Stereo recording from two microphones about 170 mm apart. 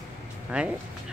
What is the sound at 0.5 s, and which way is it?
Speech, 5° right (ahead or behind).